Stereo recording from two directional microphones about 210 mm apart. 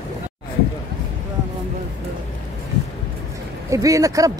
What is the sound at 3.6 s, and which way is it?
Speech, 15° right (ahead or behind).